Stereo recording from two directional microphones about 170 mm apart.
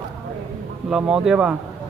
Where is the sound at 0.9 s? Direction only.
5° right (ahead or behind).